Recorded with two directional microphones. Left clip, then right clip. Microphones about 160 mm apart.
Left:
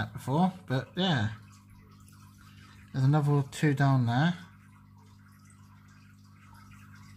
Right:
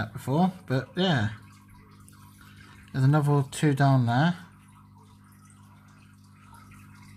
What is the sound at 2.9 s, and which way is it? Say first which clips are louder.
Speech: right 4 dB; 15° right (ahead or behind).